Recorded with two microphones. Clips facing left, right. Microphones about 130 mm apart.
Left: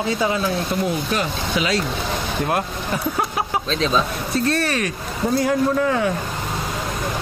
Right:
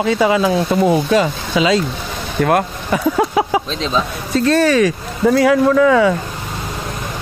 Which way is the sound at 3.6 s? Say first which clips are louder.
Left 1 dB; 15° right (ahead or behind).